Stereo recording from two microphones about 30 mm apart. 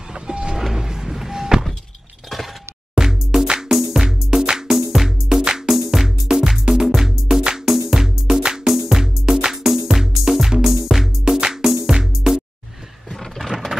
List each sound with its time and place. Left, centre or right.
0.1 s vehicle: right
0.7 s music: centre
2.9 s music: centre
3.4 s music: right
4.6 s music: centre
11.2 s music: right
13.1 s vehicle: centre